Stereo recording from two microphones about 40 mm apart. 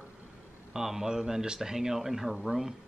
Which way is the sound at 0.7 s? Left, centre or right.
Centre.